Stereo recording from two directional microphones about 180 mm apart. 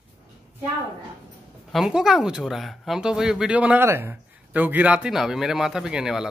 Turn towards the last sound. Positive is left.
turn(degrees=-5)  # may be behind; listen again after turning